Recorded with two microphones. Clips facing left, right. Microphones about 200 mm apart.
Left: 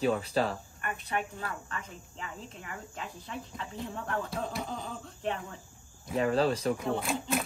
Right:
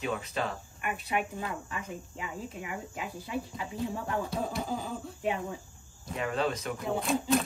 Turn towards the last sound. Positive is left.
turn(degrees=0)  # may be behind; listen again after turning